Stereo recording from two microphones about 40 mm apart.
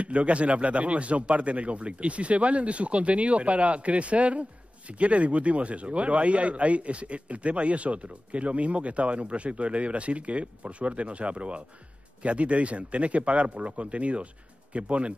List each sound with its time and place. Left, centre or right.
0.0 s a man's voice: right